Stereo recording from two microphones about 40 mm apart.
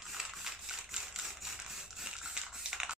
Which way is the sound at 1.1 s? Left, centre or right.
Centre.